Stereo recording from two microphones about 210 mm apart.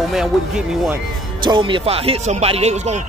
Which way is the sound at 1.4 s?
25° right (ahead or behind).